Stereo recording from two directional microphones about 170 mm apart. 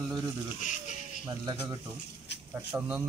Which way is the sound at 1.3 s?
25° right (ahead or behind).